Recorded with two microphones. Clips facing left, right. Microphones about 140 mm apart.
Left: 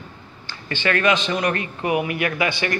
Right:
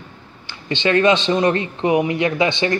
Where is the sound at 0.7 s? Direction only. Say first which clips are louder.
Right 5 dB; 20° right (ahead or behind).